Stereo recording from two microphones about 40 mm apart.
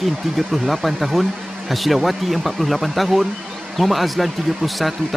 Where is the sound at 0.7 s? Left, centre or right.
Centre.